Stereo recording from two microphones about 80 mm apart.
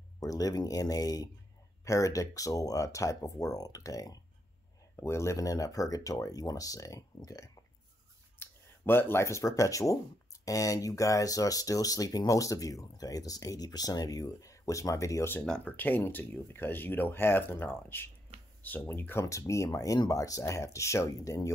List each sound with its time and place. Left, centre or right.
0.2 s speech: left
4.9 s speech: left
8.4 s speech: left
15.4 s speech: centre
15.7 s speech: left
19.2 s speech: left